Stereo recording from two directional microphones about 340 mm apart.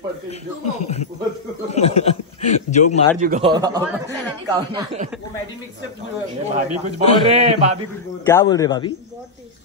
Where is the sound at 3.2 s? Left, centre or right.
Centre.